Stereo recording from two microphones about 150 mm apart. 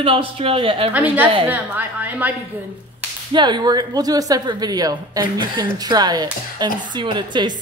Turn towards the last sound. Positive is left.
turn(degrees=-30)  # may be behind; listen again after turning